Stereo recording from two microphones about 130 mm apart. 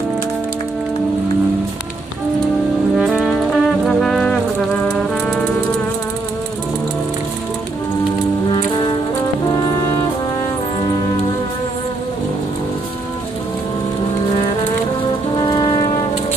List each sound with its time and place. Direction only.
3.0 s music: centre (ahead or behind)
8.5 s music: 40° left (ahead or behind)
15.4 s brass instrument: 40° left (ahead or behind)